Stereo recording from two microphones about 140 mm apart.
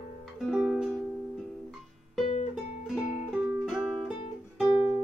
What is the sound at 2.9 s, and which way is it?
Music, 5° right (ahead or behind).